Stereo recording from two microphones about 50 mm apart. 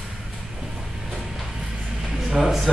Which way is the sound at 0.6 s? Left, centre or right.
Centre.